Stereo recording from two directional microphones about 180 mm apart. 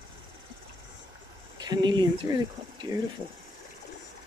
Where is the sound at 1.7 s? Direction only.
25° right (ahead or behind).